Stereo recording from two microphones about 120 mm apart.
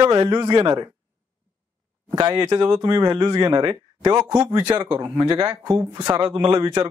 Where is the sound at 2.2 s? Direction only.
30° right (ahead or behind).